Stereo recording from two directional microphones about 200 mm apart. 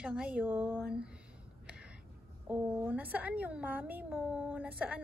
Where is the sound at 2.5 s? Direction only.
10° right (ahead or behind).